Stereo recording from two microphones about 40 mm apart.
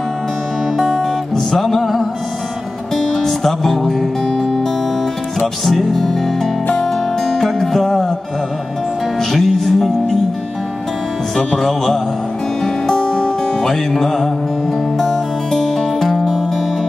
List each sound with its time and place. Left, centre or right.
0.9 s music: centre
5.7 s music: centre
9.3 s music: centre
11.3 s speech: centre
12.6 s music: centre